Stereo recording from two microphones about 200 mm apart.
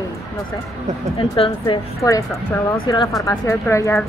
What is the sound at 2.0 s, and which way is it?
Speech, 15° left (ahead or behind).